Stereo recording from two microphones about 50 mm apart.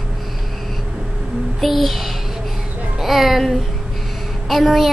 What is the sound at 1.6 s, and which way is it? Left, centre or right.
A woman's voice, centre.